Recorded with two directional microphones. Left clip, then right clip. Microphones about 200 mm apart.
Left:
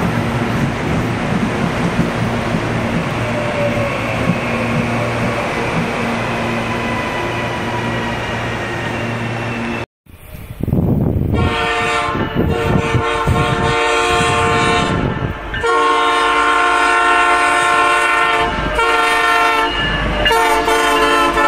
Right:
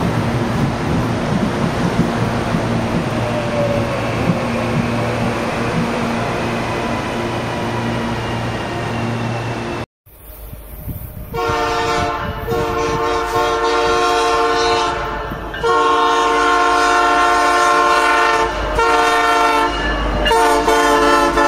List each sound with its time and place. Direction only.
13.4 s vehicle: 5° left (ahead or behind)
15.9 s train: 5° left (ahead or behind)